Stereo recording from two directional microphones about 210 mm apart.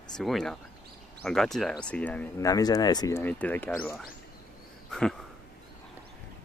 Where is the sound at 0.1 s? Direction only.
Centre (ahead or behind).